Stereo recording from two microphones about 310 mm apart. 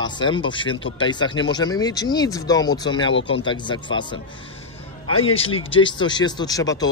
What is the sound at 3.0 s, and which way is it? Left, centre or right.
Speech, left.